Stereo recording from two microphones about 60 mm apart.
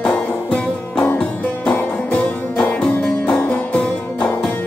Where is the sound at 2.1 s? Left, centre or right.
Left.